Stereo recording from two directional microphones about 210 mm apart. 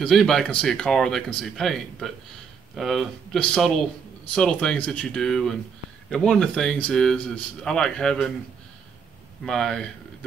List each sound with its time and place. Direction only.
0.0 s speech: centre (ahead or behind)
9.4 s speech: 5° left (ahead or behind)